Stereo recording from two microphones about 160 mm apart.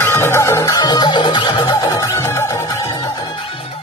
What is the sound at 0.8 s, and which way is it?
Music, 25° left (ahead or behind).